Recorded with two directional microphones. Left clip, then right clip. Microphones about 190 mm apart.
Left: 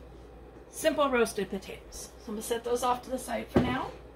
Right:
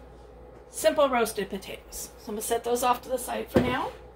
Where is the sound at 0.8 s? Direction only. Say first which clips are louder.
Right 3 dB; 25° right (ahead or behind).